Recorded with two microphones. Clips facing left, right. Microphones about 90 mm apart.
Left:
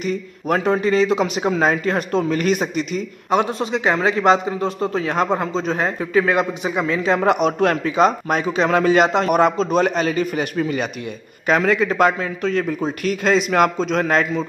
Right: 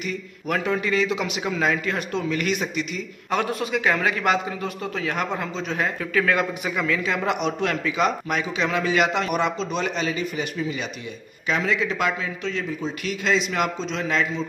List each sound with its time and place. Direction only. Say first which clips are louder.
0.0 s a man's voice: left 6 dB; 35° left (ahead or behind)
3.3 s a man's voice: left 5 dB; 25° left (ahead or behind)
6.2 s a man's voice: left 4 dB; 25° left (ahead or behind)
7.1 s a man's voice: left 7 dB; 45° left (ahead or behind)